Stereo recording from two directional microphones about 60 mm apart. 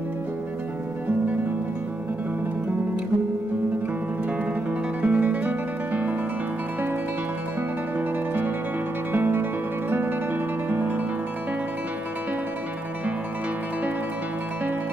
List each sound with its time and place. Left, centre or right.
5.0 s guitar: right
9.1 s music: right